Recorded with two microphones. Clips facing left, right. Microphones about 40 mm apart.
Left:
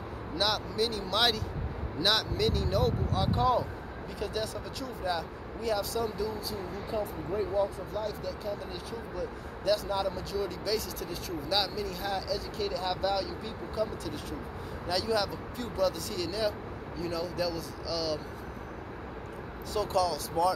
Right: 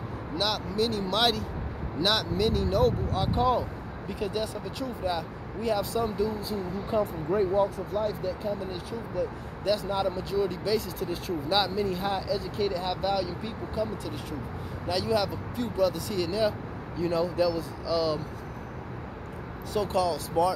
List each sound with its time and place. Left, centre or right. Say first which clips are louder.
0.4 s speech: right 2 dB; centre; by 6.3 s right
6.9 s speech: right 6 dB; right
8.0 s speech: right 6 dB; right
19.7 s speech: right 2 dB; centre